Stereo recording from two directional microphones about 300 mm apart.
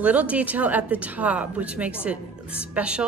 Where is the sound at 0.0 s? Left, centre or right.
Centre.